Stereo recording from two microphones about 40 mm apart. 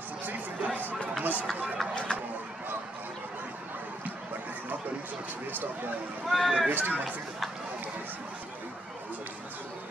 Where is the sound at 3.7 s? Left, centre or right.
Right.